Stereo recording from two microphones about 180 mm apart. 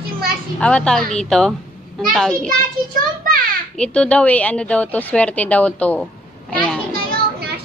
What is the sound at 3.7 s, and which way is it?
A woman's voice, 5° left (ahead or behind).